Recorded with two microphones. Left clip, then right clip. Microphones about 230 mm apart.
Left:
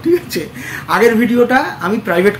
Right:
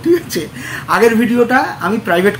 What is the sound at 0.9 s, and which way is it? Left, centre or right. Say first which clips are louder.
Speech: even; centre.